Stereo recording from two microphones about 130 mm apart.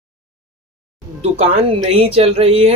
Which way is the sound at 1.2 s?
50° right (ahead or behind).